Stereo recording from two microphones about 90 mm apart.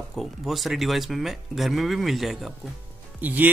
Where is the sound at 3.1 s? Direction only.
20° right (ahead or behind).